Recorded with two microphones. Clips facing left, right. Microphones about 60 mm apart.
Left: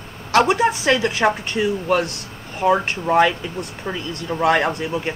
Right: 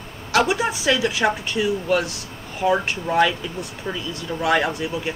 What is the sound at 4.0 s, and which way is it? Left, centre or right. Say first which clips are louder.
A woman's voice: left 6 dB; left.